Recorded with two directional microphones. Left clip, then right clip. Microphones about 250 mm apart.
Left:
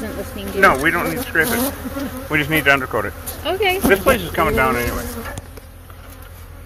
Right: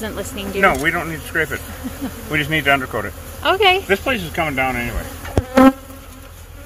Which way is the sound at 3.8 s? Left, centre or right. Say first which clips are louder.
Left 4 dB; centre.